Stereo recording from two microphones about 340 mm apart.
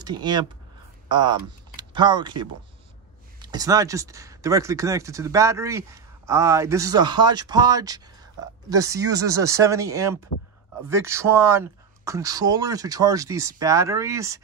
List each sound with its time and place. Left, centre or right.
0.0 s speech: centre
1.0 s a sound: centre
1.8 s speech: centre